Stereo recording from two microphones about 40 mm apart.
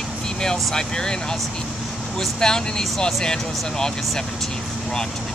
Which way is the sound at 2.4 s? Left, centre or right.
Centre.